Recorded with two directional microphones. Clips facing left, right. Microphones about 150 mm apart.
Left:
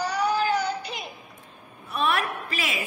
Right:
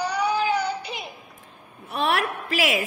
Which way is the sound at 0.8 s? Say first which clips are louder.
Right 1 dB; 60° right (ahead or behind).